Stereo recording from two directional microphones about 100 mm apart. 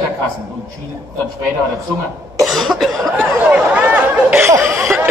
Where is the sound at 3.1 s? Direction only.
15° right (ahead or behind).